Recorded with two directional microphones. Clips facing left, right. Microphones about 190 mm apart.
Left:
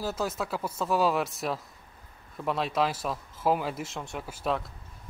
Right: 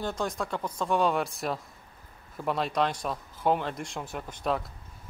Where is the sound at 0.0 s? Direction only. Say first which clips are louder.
Even; 5° left (ahead or behind).